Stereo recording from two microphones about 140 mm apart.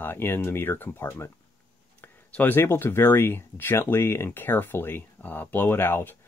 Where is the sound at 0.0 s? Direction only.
15° left (ahead or behind).